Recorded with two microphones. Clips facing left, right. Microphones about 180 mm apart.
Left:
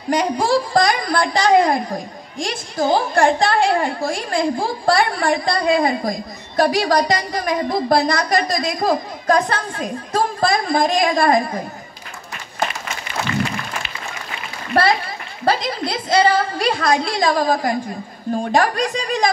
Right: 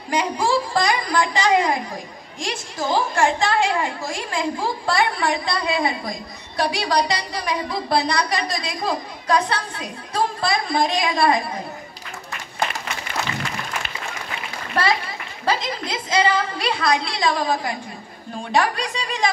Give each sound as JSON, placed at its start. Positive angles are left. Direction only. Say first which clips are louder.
{"t": 0.1, "sound": "a woman's voice", "louder": "left 4 dB", "side_deg": 35}
{"t": 14.7, "sound": "a woman's voice", "louder": "left 5 dB", "side_deg": 40}